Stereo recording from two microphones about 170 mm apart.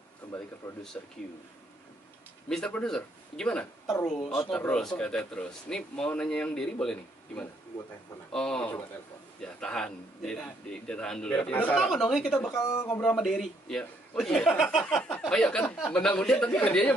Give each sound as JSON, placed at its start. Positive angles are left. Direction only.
{"t": 0.6, "sound": "a man's voice", "side_deg": 15}
{"t": 2.5, "sound": "a man's voice", "side_deg": 5}
{"t": 12.7, "sound": "a man's voice", "side_deg": 15}
{"t": 13.1, "sound": "speech", "side_deg": 0}